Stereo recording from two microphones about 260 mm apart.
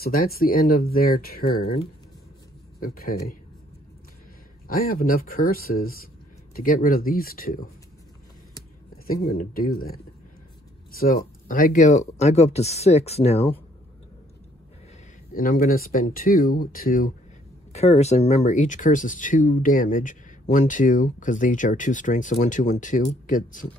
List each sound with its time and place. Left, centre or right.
0.0 s speech: left
2.8 s speech: left
4.6 s speech: left
8.9 s speech: left
11.0 s speech: left
15.3 s speech: left